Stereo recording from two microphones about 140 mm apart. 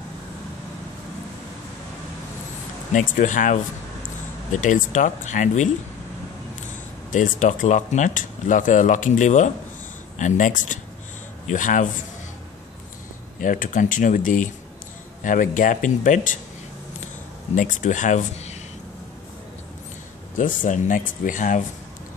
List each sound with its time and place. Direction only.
2.9 s speech: 65° left (ahead or behind)
7.1 s speech: 65° left (ahead or behind)
13.4 s speech: 70° left (ahead or behind)
17.6 s speech: 65° left (ahead or behind)
20.3 s speech: 65° left (ahead or behind)